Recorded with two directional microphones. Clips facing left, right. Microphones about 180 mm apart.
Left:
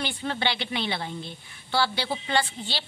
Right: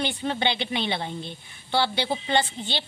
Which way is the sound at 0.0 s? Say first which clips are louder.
Right 3 dB; 20° right (ahead or behind).